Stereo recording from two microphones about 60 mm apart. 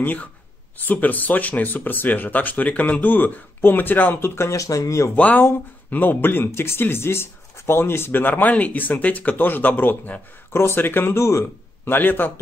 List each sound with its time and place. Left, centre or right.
0.0 s speech: left
4.5 s speech: left
5.1 s speech: left
10.5 s speech: left
11.1 s a man's voice: left
11.8 s speech: left